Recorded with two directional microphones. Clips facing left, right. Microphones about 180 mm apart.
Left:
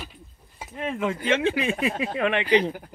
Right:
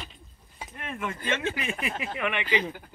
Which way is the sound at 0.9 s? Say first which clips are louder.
Left 6 dB; 25° left (ahead or behind).